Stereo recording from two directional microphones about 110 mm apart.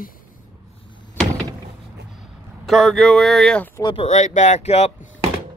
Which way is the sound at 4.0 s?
90° left.